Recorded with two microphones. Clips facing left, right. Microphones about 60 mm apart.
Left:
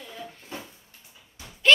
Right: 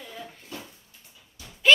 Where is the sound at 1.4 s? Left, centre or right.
Left.